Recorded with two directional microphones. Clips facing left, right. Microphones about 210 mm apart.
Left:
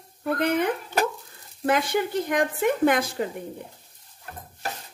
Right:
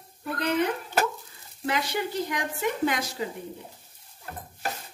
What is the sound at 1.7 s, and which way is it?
Speech, 50° left (ahead or behind).